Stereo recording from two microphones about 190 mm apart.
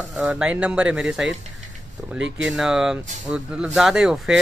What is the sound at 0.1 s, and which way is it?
Speech, 5° right (ahead or behind).